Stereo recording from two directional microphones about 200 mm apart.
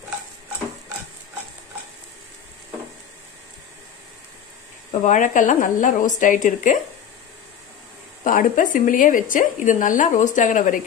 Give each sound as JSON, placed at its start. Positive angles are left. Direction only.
{"t": 5.0, "sound": "a woman's voice", "side_deg": 40}
{"t": 8.2, "sound": "a woman's voice", "side_deg": 40}